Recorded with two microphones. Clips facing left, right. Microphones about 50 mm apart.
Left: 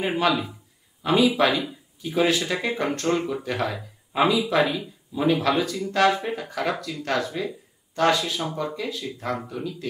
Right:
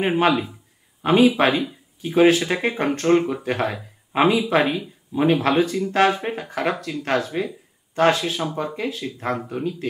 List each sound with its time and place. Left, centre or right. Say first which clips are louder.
0.0 s speech: right 4 dB; right
1.0 s speech: right 3 dB; right
8.4 s speech: right 3 dB; centre
8.7 s speech: right 3 dB; right